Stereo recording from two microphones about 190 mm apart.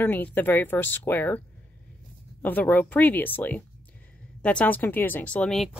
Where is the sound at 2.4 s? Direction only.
10° left (ahead or behind).